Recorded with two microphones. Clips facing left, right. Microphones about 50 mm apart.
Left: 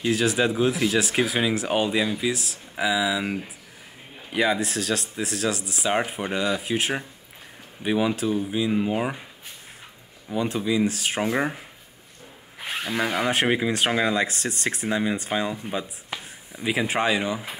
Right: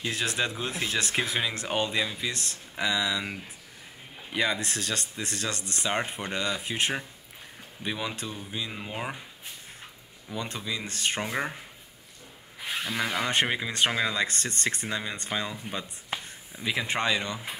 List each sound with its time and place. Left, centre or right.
0.1 s speech: centre
10.3 s speech: centre
12.5 s tools: left
12.9 s speech: centre